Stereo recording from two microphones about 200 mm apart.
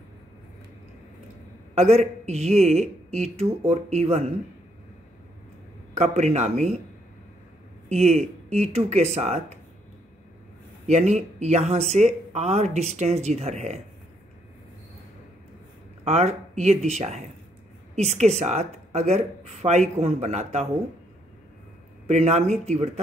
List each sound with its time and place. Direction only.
1.8 s speech: 35° right (ahead or behind)
5.9 s speech: 35° right (ahead or behind)
7.9 s speech: 30° right (ahead or behind)
10.9 s speech: 35° right (ahead or behind)
16.0 s speech: 30° right (ahead or behind)
22.0 s speech: 35° right (ahead or behind)